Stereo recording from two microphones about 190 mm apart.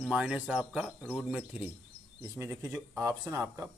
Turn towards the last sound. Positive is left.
turn(degrees=-15)  # may be behind; listen again after turning